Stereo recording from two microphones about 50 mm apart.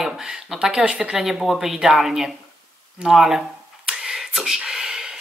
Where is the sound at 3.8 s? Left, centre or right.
Centre.